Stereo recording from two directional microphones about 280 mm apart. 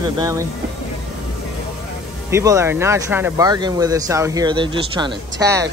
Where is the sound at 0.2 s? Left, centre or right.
Centre.